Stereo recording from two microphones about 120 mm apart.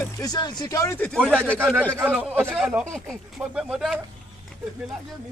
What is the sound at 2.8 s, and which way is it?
Speech, 5° left (ahead or behind).